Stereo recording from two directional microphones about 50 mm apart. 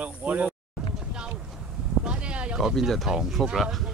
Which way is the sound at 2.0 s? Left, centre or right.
Right.